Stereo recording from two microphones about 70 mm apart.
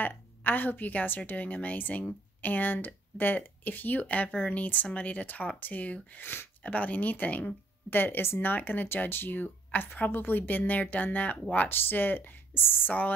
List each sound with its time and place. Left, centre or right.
0.0 s a woman's voice: left